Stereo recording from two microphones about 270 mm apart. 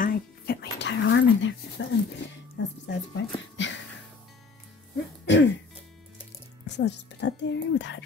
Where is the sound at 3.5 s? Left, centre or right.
Left.